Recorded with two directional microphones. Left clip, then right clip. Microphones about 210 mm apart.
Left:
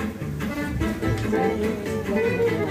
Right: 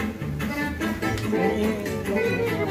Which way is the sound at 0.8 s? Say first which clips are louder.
Even; 45° right (ahead or behind).